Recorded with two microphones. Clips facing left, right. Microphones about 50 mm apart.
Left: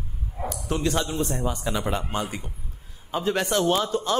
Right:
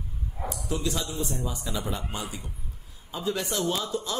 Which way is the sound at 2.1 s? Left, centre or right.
Left.